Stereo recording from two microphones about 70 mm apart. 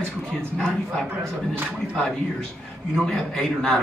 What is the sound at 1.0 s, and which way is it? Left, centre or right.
Speech, right.